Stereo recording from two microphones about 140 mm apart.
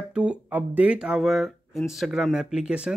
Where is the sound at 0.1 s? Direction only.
10° right (ahead or behind).